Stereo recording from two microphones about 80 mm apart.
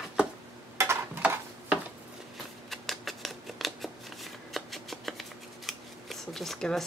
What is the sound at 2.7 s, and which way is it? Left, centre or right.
Shuffling cards, centre.